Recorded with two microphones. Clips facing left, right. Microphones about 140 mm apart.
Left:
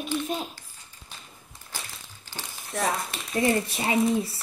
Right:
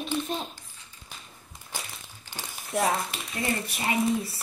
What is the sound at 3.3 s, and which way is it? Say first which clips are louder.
Speech: left 8 dB; 30° left (ahead or behind).